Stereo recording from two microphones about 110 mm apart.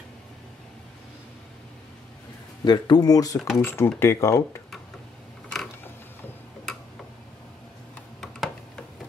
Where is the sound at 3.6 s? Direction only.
20° left (ahead or behind).